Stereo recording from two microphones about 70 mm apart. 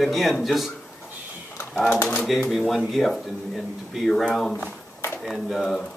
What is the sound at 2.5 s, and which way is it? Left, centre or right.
Speech, centre.